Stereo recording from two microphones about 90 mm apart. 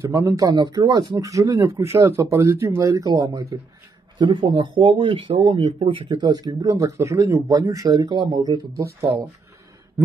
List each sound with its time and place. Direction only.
0.1 s speech: 35° right (ahead or behind)
0.6 s speech: 50° right (ahead or behind)
4.2 s speech: 65° right (ahead or behind); by 9.3 s 45° right (ahead or behind)